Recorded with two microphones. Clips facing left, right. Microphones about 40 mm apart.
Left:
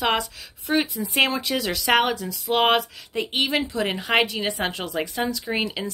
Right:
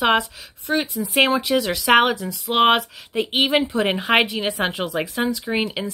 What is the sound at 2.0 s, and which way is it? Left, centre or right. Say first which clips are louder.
Speech: right 2 dB; centre.